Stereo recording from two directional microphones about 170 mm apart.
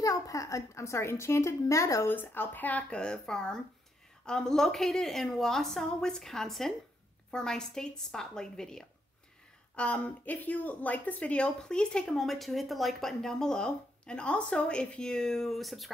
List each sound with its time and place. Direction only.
0.0 s a woman's voice: 20° left (ahead or behind); by 15.9 s centre (ahead or behind)